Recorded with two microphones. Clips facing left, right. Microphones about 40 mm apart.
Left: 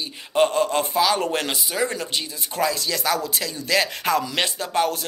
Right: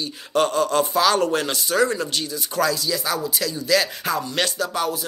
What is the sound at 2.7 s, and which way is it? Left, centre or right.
Speech, left.